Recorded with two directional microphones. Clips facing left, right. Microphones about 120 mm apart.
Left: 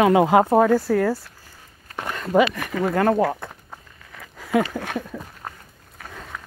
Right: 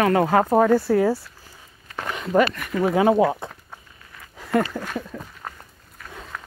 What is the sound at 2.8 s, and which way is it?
Speech, 5° right (ahead or behind).